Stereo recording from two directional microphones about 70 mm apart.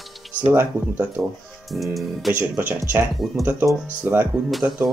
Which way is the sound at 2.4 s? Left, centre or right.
Right.